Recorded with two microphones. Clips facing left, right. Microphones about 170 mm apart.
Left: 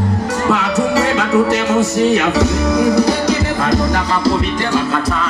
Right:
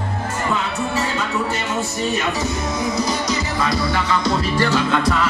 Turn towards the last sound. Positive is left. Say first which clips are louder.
# left 5 dB
turn(degrees=45)  # may be behind; listen again after turning